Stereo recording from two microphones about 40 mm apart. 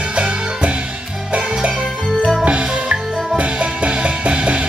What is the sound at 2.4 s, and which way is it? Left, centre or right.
Music, right.